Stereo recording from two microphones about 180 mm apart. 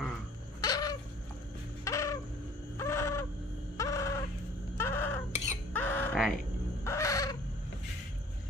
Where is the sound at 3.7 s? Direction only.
20° left (ahead or behind).